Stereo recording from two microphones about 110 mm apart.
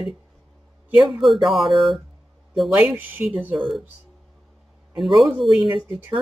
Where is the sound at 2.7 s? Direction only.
15° right (ahead or behind).